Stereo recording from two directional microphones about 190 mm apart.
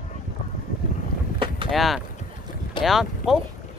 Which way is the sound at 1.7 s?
Centre (ahead or behind).